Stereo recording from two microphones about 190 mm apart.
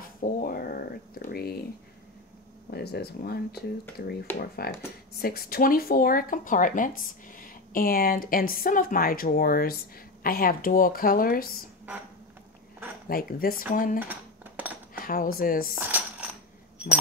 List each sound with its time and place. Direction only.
0.0 s a sound: 50° left (ahead or behind)
2.7 s speech: 60° left (ahead or behind)
13.1 s speech: 50° left (ahead or behind)
13.9 s cutlery: 10° right (ahead or behind)
15.0 s speech: 50° left (ahead or behind)
15.7 s coin: 10° right (ahead or behind)